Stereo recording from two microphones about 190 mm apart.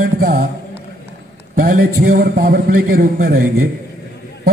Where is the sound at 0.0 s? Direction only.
50° right (ahead or behind).